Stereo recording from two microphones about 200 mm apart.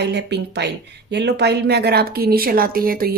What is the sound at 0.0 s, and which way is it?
Speech, 55° right (ahead or behind).